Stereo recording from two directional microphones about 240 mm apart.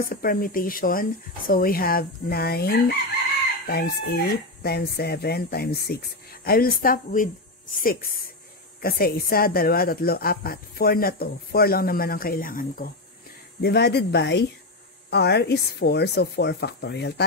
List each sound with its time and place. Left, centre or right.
0.1 s a woman's voice: left